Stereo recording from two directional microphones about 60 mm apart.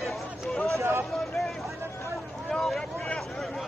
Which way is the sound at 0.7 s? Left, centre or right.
Right.